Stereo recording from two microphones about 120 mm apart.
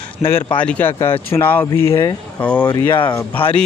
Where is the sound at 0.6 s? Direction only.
15° left (ahead or behind); by 2.2 s 30° left (ahead or behind).